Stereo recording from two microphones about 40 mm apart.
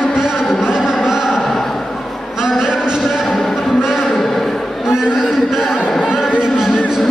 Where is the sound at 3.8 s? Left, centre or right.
Centre.